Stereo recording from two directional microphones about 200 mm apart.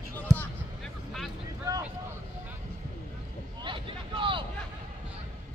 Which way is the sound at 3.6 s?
25° right (ahead or behind).